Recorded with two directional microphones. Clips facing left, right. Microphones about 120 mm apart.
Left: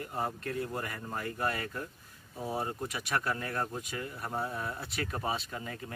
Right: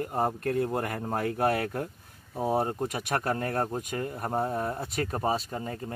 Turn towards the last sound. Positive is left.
turn(degrees=-40)  # may be behind; listen again after turning